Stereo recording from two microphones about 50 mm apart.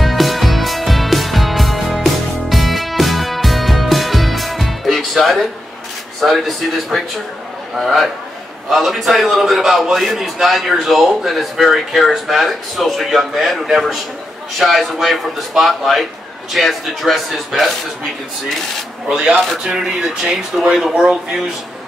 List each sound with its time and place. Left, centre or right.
0.0 s music: centre
6.2 s a man's voice: centre
19.0 s speech: right
19.3 s a man's voice: centre
19.6 s a man's voice: centre